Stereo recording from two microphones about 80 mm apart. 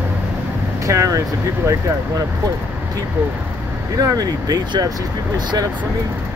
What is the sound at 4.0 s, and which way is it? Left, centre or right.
Speech, right.